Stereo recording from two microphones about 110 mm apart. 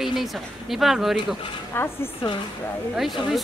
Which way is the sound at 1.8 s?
20° left (ahead or behind).